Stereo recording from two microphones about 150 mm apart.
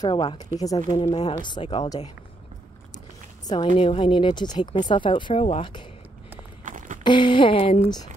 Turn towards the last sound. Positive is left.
turn(degrees=40)  # may be behind; listen again after turning